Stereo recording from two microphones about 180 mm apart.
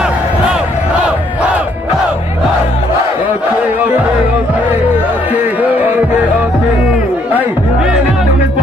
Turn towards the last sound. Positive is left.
turn(degrees=-10)  # may be behind; listen again after turning